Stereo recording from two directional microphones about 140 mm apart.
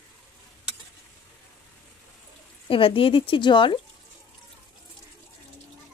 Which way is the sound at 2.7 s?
40° left (ahead or behind).